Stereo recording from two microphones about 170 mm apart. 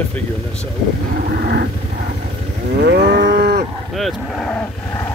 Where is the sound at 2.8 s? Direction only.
80° right.